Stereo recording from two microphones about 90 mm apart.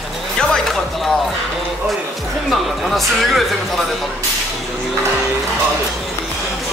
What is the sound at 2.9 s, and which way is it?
Speech, centre (ahead or behind).